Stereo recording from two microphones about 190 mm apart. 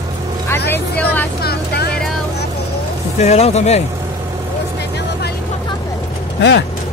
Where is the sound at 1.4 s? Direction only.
55° left (ahead or behind).